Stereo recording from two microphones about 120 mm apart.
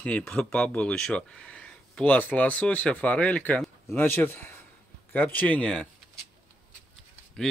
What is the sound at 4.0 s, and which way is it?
Speech, 20° left (ahead or behind).